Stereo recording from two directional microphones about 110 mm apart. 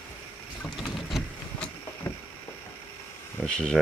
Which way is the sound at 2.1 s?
25° left (ahead or behind).